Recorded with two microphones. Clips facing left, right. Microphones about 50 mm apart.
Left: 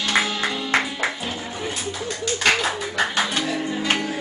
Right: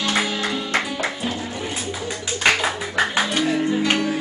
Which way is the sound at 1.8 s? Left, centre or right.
Centre.